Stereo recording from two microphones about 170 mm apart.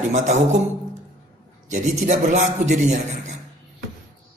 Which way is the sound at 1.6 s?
45° right (ahead or behind).